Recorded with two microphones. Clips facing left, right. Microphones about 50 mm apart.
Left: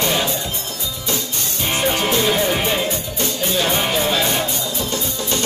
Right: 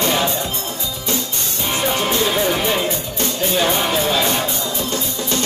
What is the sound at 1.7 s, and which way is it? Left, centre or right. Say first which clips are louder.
Music: even; centre.